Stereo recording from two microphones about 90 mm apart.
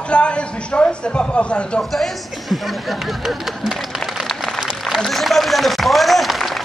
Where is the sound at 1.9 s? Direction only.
Centre (ahead or behind).